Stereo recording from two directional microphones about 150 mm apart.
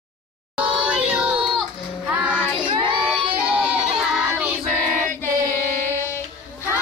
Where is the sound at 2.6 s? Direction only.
35° right (ahead or behind).